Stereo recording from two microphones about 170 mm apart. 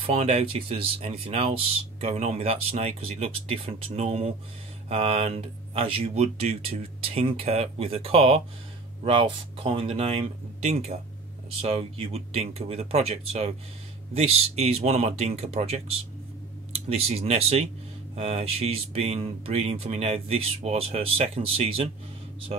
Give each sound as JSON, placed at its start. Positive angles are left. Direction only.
{"t": 0.0, "sound": "speech", "side_deg": -35}
{"t": 16.9, "sound": "speech", "side_deg": -35}